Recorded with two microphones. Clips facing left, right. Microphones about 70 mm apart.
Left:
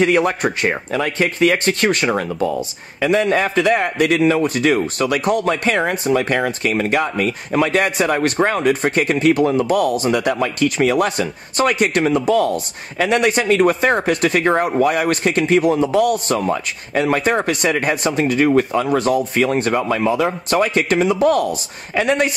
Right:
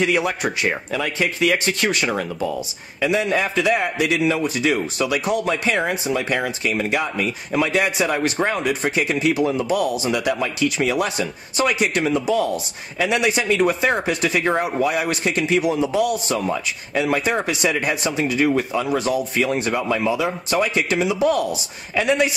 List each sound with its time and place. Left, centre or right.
0.0 s a man's voice: left
16.3 s speech: left
17.0 s a man's voice: left
20.1 s a man's voice: left